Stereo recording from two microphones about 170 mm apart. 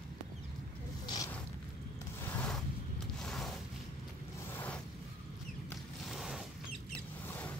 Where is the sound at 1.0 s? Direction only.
20° left (ahead or behind).